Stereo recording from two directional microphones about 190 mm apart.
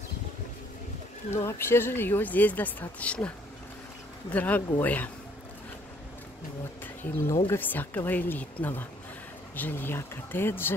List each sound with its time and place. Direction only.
1.3 s speech: 15° left (ahead or behind)
4.3 s speech: 10° left (ahead or behind)
7.0 s speech: 10° left (ahead or behind)